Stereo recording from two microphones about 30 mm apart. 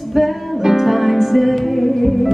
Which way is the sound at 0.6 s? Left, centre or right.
Centre.